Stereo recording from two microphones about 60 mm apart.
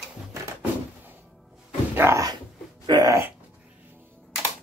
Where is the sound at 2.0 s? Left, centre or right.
Right.